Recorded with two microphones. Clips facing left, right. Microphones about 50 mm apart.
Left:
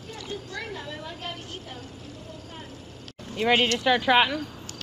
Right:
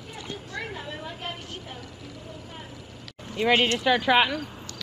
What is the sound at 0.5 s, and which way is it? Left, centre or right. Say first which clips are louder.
A woman's voice: right 1 dB; centre.